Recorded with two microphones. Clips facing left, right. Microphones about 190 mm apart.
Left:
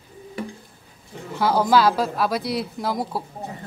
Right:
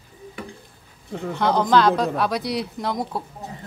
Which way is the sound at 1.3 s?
5° left (ahead or behind).